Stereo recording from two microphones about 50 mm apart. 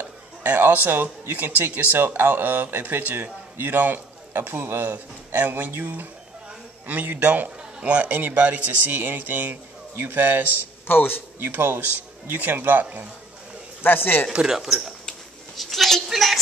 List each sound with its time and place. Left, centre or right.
0.0 s a sound: right
1.3 s a man's voice: right
2.0 s a man's voice: right
6.9 s a man's voice: right
10.9 s speech: left
11.3 s a man's voice: right
13.8 s speech: left
14.5 s speech: centre
15.0 s a sound: centre